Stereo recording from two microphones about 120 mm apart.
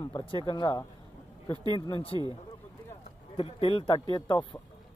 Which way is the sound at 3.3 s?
50° left (ahead or behind).